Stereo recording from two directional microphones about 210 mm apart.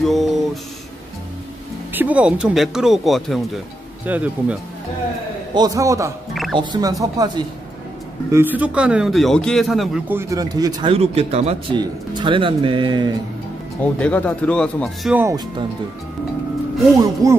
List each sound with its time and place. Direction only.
0.0 s a sound: centre (ahead or behind)
2.0 s a man's voice: 5° right (ahead or behind)
5.5 s a man's voice: 15° right (ahead or behind)
6.3 s music: centre (ahead or behind)
6.6 s a man's voice: 20° right (ahead or behind)
13.7 s speech: 5° left (ahead or behind)
15.1 s a man's voice: 15° right (ahead or behind)
16.9 s a man's voice: 15° right (ahead or behind)